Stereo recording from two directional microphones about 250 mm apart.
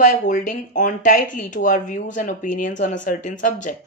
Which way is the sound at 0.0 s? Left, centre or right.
Left.